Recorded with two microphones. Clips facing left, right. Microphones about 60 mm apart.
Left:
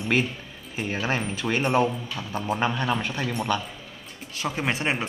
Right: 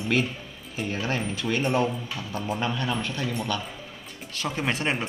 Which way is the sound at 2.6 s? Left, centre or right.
Left.